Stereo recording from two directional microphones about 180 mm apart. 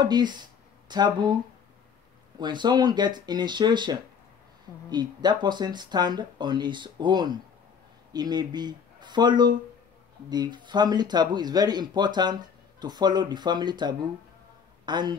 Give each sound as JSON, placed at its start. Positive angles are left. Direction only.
{"t": 0.0, "sound": "speech", "side_deg": -25}